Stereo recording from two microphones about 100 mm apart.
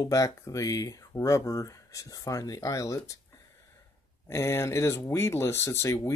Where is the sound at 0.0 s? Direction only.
35° left (ahead or behind).